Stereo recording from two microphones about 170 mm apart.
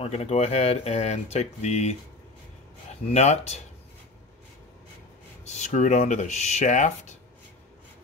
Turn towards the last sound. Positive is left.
turn(degrees=45)  # may be behind; listen again after turning